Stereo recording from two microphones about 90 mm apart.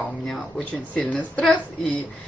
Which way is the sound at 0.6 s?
15° left (ahead or behind).